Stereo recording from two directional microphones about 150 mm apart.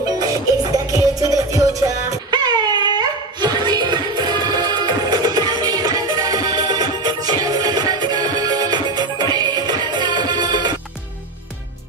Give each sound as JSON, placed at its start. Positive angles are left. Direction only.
{"t": 0.0, "sound": "music", "side_deg": -25}